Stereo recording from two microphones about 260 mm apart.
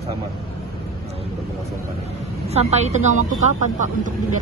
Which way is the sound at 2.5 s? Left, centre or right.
Right.